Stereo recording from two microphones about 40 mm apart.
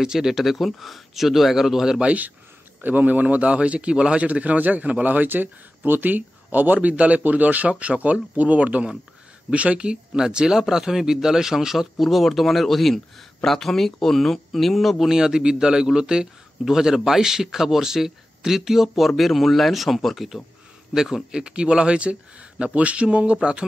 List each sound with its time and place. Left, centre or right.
0.0 s a man's voice: centre
2.8 s a man's voice: right
10.1 s a man's voice: centre
12.0 s speech: centre
15.0 s a man's voice: centre
20.9 s speech: centre